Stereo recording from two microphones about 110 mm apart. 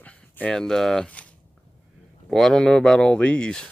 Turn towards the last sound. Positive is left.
turn(degrees=10)  # may be behind; listen again after turning